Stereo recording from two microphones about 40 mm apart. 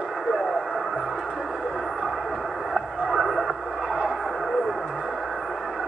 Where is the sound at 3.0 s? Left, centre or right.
Centre.